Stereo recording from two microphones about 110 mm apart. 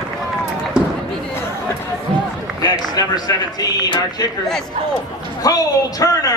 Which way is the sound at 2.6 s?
35° left (ahead or behind).